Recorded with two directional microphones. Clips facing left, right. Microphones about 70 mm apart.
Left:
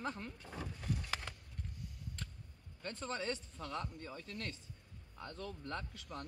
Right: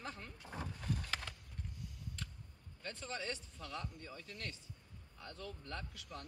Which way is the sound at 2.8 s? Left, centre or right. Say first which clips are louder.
Left 3 dB; left.